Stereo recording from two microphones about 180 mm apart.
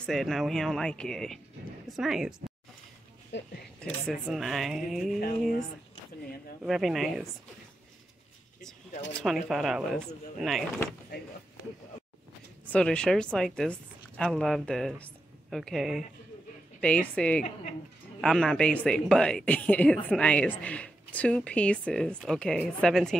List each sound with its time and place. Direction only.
0.0 s a woman's voice: centre (ahead or behind)
3.3 s speech: 75° left (ahead or behind)
4.1 s a woman's voice: centre (ahead or behind)
6.6 s a woman's voice: centre (ahead or behind)
9.2 s a woman's voice: centre (ahead or behind)
12.7 s a woman's voice: 5° left (ahead or behind)